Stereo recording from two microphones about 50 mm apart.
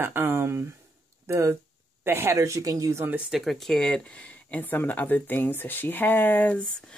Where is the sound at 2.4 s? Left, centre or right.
Right.